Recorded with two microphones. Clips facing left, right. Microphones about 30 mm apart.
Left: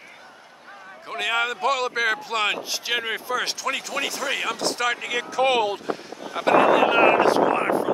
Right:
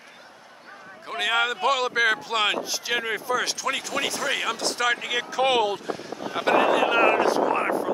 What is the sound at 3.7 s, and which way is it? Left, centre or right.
Speech, centre.